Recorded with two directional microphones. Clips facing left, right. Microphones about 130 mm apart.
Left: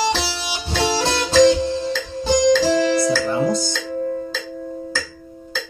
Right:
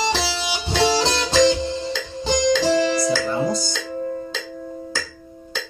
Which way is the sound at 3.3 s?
Centre (ahead or behind).